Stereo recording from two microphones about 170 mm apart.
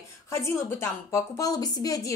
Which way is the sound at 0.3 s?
15° left (ahead or behind).